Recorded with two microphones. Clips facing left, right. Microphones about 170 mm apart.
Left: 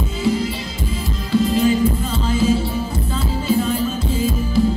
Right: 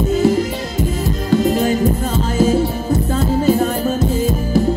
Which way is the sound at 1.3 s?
50° right (ahead or behind).